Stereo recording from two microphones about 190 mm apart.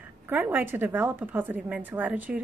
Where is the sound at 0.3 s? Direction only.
10° right (ahead or behind).